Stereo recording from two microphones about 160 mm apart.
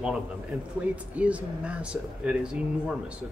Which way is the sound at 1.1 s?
10° right (ahead or behind).